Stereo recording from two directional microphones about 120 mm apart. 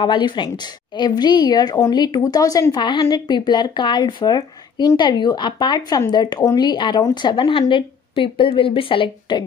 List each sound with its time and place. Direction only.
0.0 s speech: 40° left (ahead or behind)